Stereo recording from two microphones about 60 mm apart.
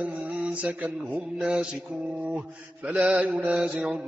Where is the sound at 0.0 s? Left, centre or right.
Right.